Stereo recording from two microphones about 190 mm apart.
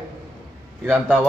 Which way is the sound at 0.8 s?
5° right (ahead or behind).